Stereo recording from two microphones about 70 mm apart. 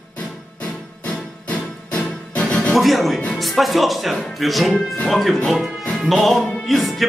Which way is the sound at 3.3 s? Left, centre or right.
Centre.